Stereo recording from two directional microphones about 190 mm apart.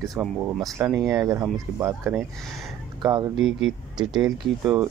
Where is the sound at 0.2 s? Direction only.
Centre (ahead or behind).